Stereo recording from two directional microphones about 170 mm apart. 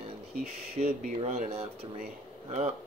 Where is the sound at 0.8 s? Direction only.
35° right (ahead or behind).